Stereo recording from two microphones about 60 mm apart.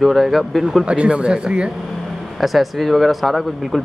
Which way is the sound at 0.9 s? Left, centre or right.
Right.